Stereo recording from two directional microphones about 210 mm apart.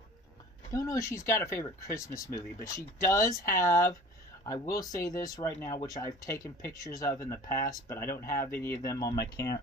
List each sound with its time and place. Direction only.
0.7 s speech: 15° left (ahead or behind)